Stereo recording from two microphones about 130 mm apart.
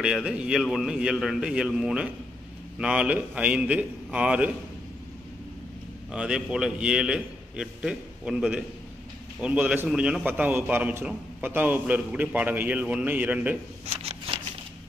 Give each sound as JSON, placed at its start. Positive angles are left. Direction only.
{"t": 0.0, "sound": "a man's voice", "side_deg": -10}
{"t": 6.1, "sound": "a man's voice", "side_deg": -5}
{"t": 13.8, "sound": "a sound", "side_deg": -50}